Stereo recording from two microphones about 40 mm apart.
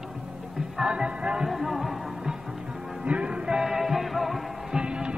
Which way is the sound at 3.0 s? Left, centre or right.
Right.